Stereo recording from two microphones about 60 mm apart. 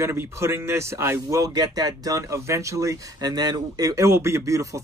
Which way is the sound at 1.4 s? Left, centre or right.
Right.